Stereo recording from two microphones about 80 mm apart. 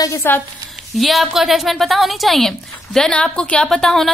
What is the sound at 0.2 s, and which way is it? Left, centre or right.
Speech, left.